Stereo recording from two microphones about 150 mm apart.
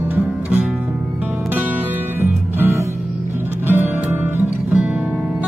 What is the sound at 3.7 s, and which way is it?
Music, 10° right (ahead or behind).